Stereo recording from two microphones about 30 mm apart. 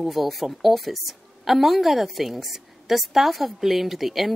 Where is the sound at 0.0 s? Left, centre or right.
Centre.